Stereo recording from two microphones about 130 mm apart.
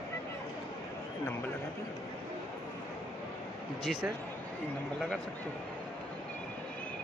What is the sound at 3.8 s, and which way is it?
Speech, centre (ahead or behind).